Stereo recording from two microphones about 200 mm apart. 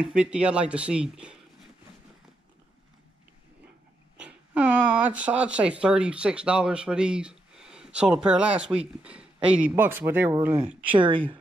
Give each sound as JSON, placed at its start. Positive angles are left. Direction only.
{"t": 0.0, "sound": "speech", "side_deg": -5}
{"t": 4.2, "sound": "speech", "side_deg": -5}
{"t": 11.0, "sound": "speech", "side_deg": -25}